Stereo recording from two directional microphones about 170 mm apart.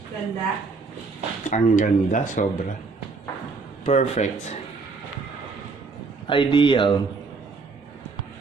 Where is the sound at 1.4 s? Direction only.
45° left (ahead or behind).